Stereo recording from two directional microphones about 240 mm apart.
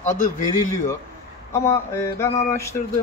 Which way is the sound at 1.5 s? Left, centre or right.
Centre.